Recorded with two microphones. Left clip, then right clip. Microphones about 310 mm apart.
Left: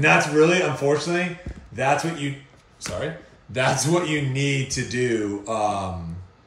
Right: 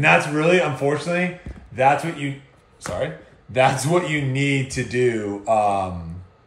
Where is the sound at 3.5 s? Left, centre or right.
Right.